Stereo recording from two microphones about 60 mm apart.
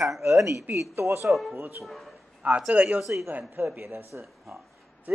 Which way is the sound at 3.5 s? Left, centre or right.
Right.